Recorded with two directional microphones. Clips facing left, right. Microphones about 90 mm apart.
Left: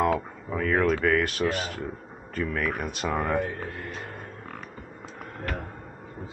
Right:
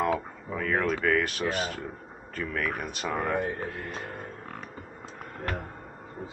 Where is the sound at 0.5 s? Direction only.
5° left (ahead or behind).